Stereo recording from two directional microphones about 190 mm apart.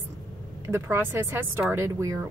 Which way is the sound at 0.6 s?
10° right (ahead or behind).